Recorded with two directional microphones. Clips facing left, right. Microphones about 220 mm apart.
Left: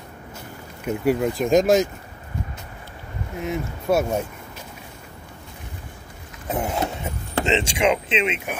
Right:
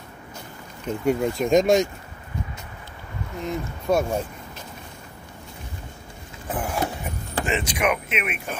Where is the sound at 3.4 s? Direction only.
5° left (ahead or behind).